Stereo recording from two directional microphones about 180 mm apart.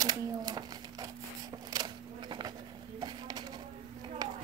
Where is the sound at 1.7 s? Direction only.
25° right (ahead or behind).